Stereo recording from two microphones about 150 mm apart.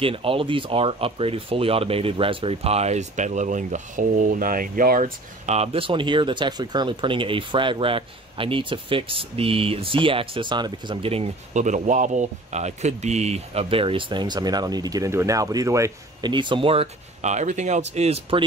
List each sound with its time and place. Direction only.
0.0 s speech: 40° right (ahead or behind); by 5.1 s 70° right (ahead or behind)
5.5 s speech: 40° right (ahead or behind)